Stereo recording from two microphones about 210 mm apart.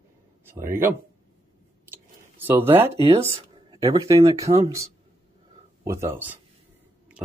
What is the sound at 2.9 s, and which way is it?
Speech, 25° right (ahead or behind).